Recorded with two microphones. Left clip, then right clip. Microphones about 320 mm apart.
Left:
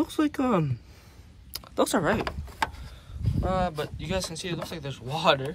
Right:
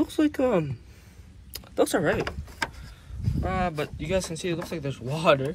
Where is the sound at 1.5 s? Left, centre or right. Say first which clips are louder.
Right 1 dB; left.